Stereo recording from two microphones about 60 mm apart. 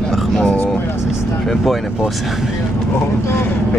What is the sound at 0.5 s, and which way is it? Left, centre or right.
Speech, left.